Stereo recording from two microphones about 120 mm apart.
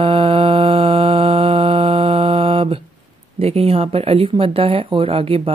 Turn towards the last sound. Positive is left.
turn(degrees=-55)  # may be behind; listen again after turning